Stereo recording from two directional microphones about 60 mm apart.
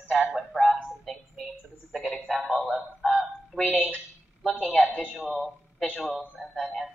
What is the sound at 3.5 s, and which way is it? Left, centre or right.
Speech, centre.